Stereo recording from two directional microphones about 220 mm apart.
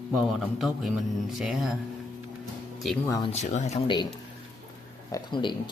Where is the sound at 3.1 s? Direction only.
25° left (ahead or behind).